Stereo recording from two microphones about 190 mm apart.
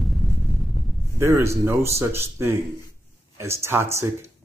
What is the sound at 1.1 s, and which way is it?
Speech, 15° right (ahead or behind).